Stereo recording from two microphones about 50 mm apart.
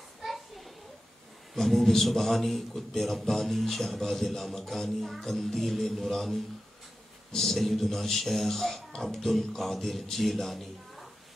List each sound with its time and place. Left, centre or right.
0.2 s children playing: centre
1.5 s a man's voice: centre